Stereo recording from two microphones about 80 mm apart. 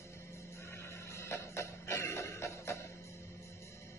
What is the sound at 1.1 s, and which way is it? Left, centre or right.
Music, left.